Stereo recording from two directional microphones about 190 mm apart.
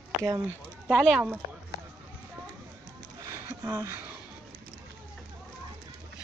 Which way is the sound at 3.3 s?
15° right (ahead or behind).